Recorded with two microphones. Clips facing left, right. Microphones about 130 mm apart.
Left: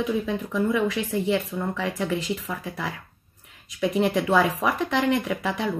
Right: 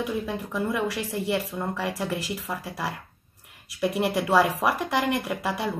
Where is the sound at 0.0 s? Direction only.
10° right (ahead or behind).